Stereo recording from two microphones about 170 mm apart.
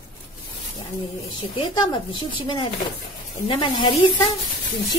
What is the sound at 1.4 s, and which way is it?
Speech, 30° left (ahead or behind).